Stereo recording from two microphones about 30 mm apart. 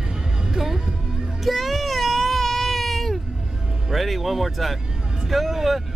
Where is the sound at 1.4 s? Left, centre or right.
Centre.